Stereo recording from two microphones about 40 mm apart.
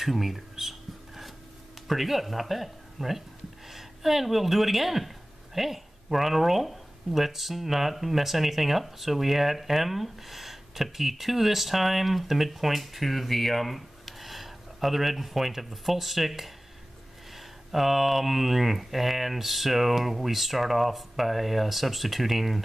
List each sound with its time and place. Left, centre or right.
0.0 s a sound: centre
1.9 s speech: centre
17.6 s speech: centre